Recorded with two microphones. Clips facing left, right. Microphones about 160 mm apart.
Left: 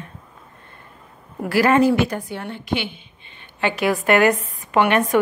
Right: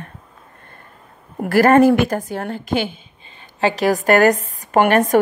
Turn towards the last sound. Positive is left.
turn(degrees=-45)  # may be behind; listen again after turning